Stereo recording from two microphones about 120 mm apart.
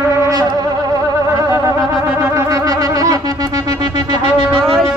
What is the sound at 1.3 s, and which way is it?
Music, 25° right (ahead or behind).